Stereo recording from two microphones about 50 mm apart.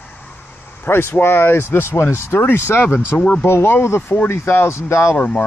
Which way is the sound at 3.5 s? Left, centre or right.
Left.